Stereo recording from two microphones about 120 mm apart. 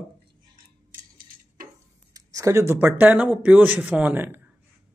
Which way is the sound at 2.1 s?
30° right (ahead or behind).